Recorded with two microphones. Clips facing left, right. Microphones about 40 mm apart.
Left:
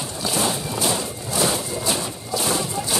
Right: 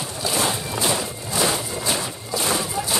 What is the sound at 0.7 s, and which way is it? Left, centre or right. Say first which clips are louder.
Vehicle: even; right.